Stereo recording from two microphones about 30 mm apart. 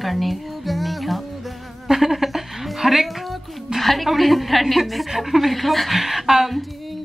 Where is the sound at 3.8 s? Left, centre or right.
Centre.